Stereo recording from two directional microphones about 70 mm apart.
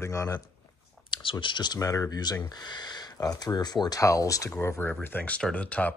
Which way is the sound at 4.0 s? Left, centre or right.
Left.